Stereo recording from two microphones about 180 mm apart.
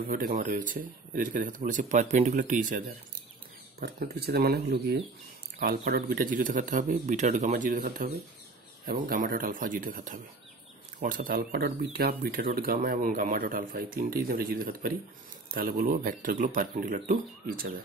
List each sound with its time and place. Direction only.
0.0 s speech: 55° right (ahead or behind)
3.8 s speech: 60° right (ahead or behind)